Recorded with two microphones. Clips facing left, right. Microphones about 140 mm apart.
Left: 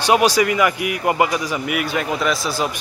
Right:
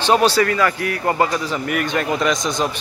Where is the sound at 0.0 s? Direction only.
10° left (ahead or behind).